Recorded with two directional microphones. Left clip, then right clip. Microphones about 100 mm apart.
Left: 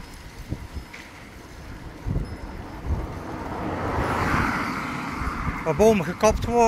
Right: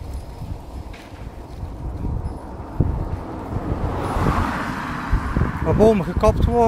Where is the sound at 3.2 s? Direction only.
15° left (ahead or behind).